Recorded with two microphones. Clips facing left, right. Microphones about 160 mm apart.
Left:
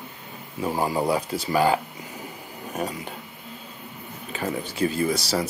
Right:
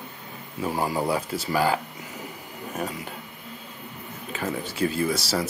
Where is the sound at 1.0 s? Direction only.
15° left (ahead or behind).